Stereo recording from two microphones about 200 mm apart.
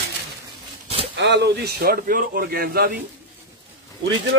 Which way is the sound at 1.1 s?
60° right (ahead or behind).